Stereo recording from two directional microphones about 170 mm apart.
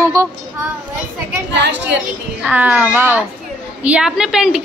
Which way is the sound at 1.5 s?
90° right.